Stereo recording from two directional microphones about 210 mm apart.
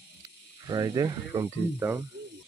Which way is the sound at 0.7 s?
20° right (ahead or behind).